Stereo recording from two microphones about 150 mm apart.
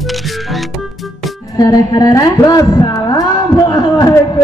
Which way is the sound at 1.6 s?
25° left (ahead or behind).